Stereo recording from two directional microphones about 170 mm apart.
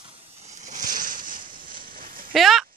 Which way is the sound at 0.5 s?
45° right (ahead or behind).